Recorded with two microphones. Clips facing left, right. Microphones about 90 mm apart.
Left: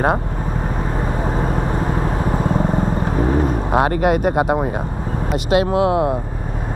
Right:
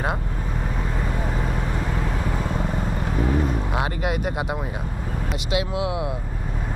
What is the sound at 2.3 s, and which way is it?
Vehicle, 40° left (ahead or behind).